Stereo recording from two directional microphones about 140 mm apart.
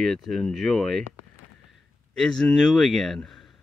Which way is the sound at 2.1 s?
5° left (ahead or behind).